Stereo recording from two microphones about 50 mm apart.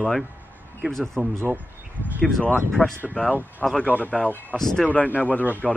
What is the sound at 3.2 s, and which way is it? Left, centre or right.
Speech, left.